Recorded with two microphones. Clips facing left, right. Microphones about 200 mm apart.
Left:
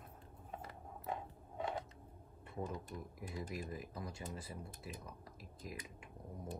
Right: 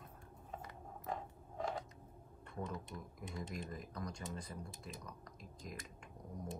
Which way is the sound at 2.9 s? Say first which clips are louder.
Left 2 dB; 20° left (ahead or behind).